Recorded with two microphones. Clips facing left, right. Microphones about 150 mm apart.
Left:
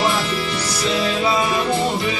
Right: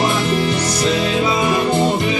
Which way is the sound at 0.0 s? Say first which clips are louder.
Right 4 dB; 55° right (ahead or behind).